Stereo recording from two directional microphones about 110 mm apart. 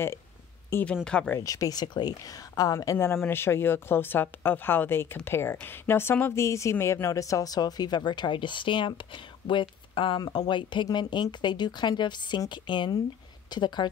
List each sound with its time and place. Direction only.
1.0 s speech: 10° left (ahead or behind)
1.4 s a woman's voice: 30° left (ahead or behind)